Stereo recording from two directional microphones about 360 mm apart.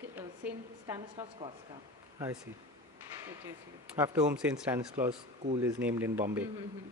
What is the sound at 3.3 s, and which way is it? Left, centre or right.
Speech, centre.